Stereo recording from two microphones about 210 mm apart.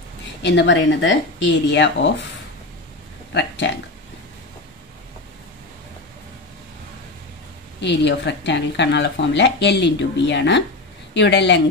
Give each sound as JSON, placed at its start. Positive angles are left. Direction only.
{"t": 0.4, "sound": "speech", "side_deg": 55}
{"t": 3.3, "sound": "speech", "side_deg": 60}
{"t": 7.8, "sound": "speech", "side_deg": 55}